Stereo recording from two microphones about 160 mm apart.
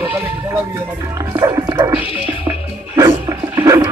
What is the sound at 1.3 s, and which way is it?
Music, 20° right (ahead or behind).